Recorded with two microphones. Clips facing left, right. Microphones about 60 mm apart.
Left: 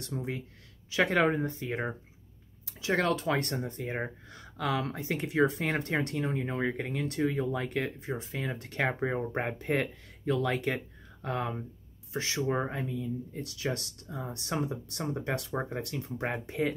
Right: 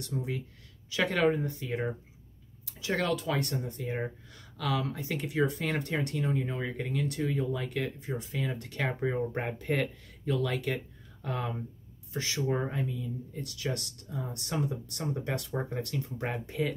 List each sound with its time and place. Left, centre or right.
0.0 s speech: left
9.3 s speech: left